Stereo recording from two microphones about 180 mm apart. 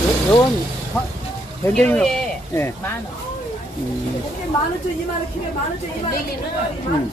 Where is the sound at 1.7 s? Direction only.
5° left (ahead or behind).